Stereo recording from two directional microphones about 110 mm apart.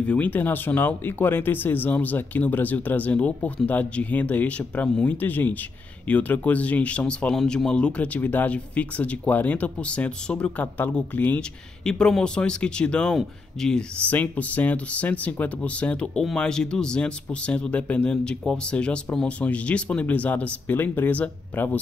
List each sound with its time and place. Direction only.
0.0 s speech: 15° left (ahead or behind)